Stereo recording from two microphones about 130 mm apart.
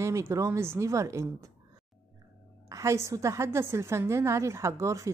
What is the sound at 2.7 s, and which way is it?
A woman's voice, 25° right (ahead or behind).